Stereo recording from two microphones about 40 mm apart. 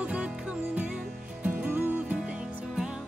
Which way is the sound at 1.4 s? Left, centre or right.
Right.